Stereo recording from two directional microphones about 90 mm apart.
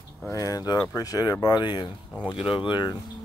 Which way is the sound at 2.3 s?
80° left.